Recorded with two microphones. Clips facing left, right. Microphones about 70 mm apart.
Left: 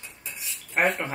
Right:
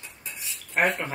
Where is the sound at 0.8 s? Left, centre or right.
Centre.